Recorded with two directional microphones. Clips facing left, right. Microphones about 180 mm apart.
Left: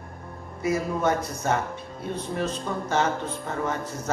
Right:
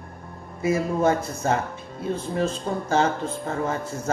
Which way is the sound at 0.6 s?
25° right (ahead or behind).